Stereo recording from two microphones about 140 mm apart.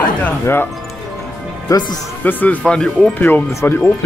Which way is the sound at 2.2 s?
10° left (ahead or behind).